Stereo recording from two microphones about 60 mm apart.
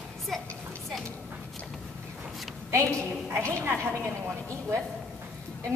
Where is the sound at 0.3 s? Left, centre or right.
Centre.